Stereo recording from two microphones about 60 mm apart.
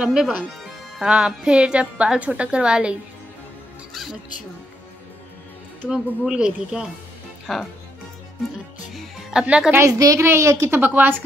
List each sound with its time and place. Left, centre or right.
0.0 s a woman's voice: centre
3.9 s music: centre
5.9 s speech: centre
7.5 s speech: centre
8.9 s music: centre
9.8 s a woman's voice: right
10.2 s a woman's voice: right
10.7 s speech: right